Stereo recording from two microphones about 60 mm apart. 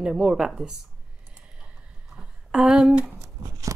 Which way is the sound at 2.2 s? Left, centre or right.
Centre.